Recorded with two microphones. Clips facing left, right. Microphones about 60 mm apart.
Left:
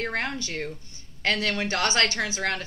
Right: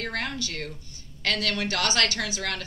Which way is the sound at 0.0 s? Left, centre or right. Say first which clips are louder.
Left 2 dB; left.